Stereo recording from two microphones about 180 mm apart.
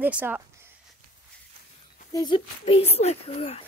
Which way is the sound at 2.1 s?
25° left (ahead or behind).